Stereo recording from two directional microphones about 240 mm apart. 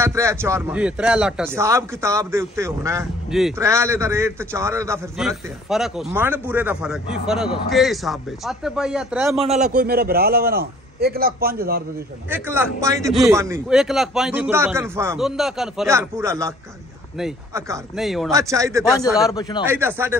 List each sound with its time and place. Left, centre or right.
0.0 s a man's voice: centre
9.4 s a man's voice: right
12.3 s a man's voice: centre
15.9 s speech: centre
17.9 s a man's voice: centre
18.3 s speech: centre
19.0 s a man's voice: centre